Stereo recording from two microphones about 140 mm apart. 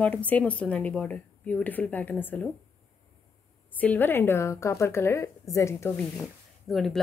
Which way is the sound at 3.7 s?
10° left (ahead or behind).